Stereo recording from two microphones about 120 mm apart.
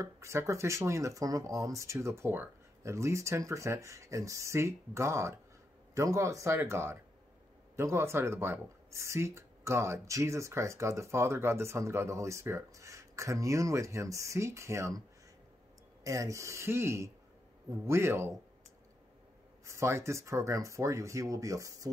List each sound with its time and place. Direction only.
0.0 s speech: 25° right (ahead or behind)
16.0 s speech: 25° right (ahead or behind)
19.6 s speech: 25° right (ahead or behind)